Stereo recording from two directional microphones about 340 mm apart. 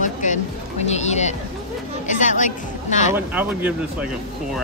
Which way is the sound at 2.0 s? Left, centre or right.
Left.